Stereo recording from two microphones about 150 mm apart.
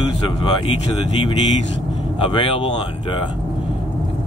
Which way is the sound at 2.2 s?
35° left (ahead or behind).